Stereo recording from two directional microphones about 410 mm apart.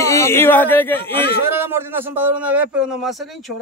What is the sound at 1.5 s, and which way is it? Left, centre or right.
A man's voice, centre.